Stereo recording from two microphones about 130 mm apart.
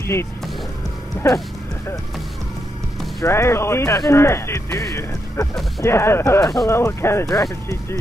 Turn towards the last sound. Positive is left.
turn(degrees=25)  # may be behind; listen again after turning